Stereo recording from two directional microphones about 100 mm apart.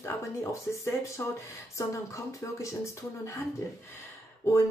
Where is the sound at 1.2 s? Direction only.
25° left (ahead or behind).